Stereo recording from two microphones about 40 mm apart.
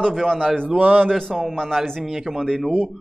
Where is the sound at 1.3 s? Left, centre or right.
Centre.